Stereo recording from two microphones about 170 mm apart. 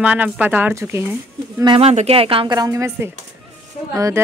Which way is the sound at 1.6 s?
30° right (ahead or behind).